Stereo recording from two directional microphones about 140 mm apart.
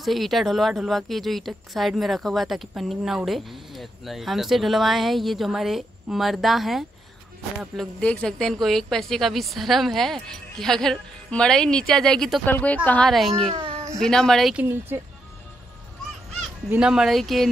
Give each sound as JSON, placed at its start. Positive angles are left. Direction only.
{"t": 0.0, "sound": "speech", "side_deg": 0}
{"t": 12.4, "sound": "a woman's voice", "side_deg": 15}
{"t": 13.1, "sound": "speech", "side_deg": 0}
{"t": 13.5, "sound": "a sound", "side_deg": -45}
{"t": 13.9, "sound": "speech", "side_deg": 5}
{"t": 14.6, "sound": "speech", "side_deg": -15}
{"t": 16.7, "sound": "speech", "side_deg": -5}